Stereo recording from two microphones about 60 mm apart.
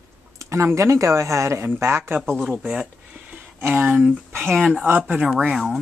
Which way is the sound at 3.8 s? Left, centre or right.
Right.